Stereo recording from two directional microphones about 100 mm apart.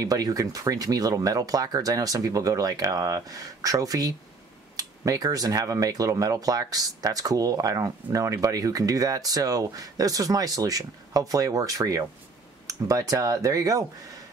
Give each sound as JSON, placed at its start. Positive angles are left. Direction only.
{"t": 0.0, "sound": "speech", "side_deg": -35}